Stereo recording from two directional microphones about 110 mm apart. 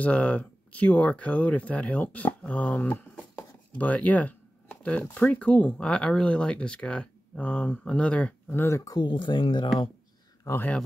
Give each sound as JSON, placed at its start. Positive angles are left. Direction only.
{"t": 0.0, "sound": "speech", "side_deg": 10}
{"t": 8.9, "sound": "speech", "side_deg": 45}
{"t": 10.4, "sound": "speech", "side_deg": 20}